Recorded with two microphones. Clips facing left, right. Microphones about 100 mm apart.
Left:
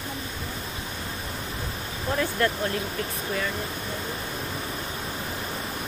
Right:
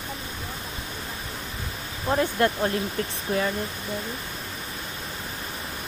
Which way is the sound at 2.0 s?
30° right (ahead or behind).